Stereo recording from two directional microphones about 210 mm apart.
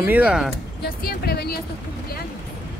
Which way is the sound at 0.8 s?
45° left (ahead or behind).